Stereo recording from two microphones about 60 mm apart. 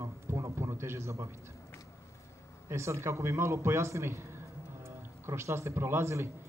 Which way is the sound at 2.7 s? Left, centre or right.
Right.